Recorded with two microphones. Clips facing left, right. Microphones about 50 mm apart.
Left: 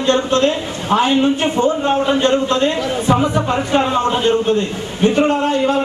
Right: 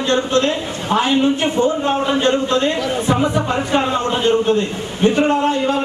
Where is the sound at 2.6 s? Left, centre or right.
Centre.